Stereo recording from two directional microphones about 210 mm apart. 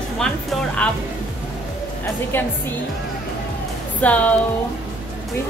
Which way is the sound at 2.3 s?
10° left (ahead or behind).